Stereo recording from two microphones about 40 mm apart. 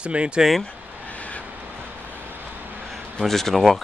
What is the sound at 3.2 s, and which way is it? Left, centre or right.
Speech, centre.